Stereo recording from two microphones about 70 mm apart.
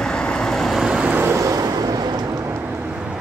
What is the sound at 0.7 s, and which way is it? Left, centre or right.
Vehicle, centre.